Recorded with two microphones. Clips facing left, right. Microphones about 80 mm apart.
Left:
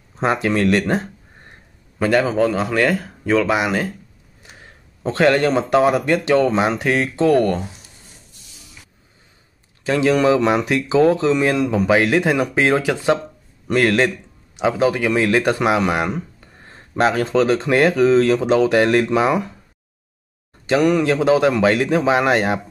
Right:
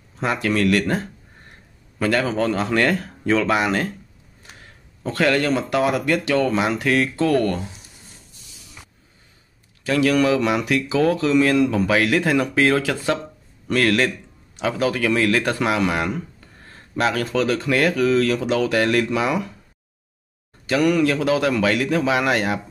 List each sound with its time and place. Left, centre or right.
0.2 s speech: left; by 3.9 s centre
5.0 s speech: left
9.8 s speech: left
20.6 s speech: left